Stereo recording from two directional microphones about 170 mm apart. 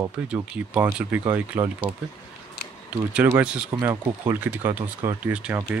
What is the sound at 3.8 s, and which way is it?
Speech, 20° right (ahead or behind).